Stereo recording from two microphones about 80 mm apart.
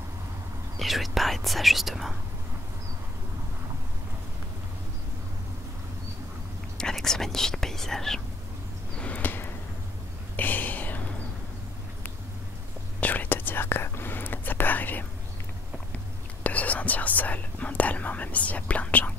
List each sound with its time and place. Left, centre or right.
0.7 s speech: centre
6.8 s speech: centre
8.9 s a sound: centre
10.3 s whispering: left
13.0 s whispering: left
16.4 s whispering: centre